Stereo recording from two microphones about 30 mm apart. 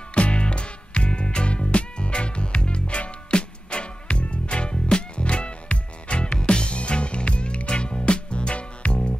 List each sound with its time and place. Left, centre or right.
0.1 s music: left